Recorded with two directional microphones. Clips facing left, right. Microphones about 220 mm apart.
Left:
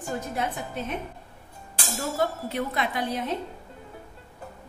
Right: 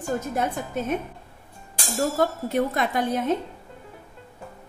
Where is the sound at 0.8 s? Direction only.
45° right (ahead or behind).